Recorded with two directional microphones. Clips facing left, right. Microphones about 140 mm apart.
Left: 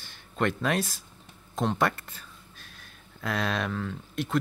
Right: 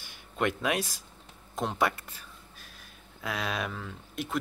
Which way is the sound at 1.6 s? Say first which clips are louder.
Left 2 dB; 10° right (ahead or behind).